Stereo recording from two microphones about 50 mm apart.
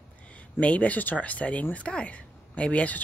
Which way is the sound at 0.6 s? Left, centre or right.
Left.